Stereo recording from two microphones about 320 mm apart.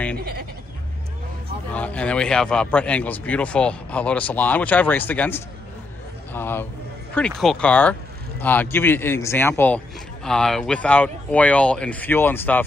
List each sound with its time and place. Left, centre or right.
0.2 s bleat: right
1.7 s a man's voice: centre